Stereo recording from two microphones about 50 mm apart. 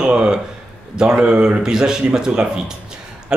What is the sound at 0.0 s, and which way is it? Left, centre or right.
A man's voice, centre.